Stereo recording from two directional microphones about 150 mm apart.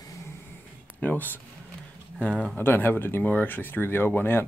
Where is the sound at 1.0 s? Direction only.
10° left (ahead or behind).